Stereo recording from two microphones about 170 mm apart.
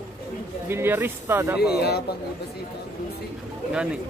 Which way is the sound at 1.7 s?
70° left (ahead or behind).